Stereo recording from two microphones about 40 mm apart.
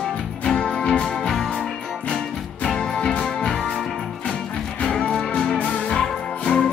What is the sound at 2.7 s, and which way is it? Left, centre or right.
Music, left.